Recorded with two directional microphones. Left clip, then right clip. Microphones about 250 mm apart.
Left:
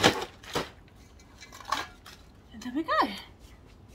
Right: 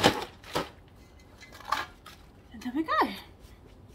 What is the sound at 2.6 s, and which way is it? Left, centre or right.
Speech, centre.